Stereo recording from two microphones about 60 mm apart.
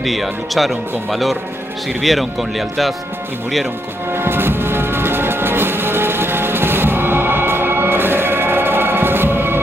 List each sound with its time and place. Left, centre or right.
0.0 s speech: centre
4.1 s music: right